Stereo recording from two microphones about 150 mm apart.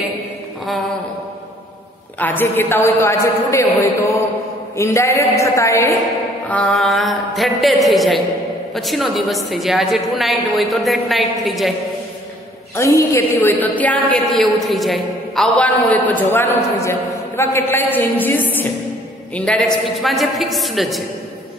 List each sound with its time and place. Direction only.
2.1 s a man's voice: 10° left (ahead or behind)
4.7 s a woman's voice: 20° left (ahead or behind)
6.5 s a woman's voice: 5° left (ahead or behind)
12.7 s a man's voice: 20° left (ahead or behind); by 21.0 s centre (ahead or behind)